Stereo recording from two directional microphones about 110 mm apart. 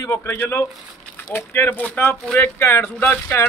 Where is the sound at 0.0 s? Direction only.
25° left (ahead or behind).